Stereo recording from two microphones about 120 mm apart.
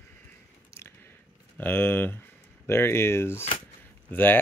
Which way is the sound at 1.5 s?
15° left (ahead or behind).